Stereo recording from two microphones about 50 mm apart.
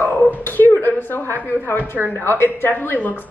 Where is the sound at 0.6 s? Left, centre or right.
Left.